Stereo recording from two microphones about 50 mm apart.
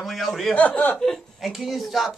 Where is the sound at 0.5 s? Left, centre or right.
Left.